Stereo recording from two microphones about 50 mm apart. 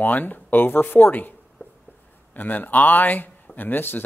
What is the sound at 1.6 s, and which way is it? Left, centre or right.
Writing, left.